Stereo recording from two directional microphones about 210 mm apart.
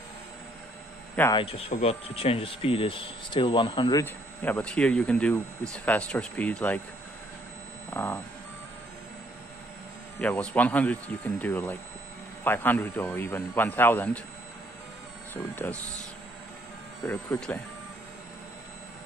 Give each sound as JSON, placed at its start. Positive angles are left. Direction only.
{"t": 1.3, "sound": "speech", "side_deg": 25}
{"t": 4.0, "sound": "speech", "side_deg": 10}
{"t": 7.9, "sound": "speech", "side_deg": 10}
{"t": 10.2, "sound": "speech", "side_deg": 5}
{"t": 15.3, "sound": "speech", "side_deg": 10}
{"t": 17.0, "sound": "speech", "side_deg": 5}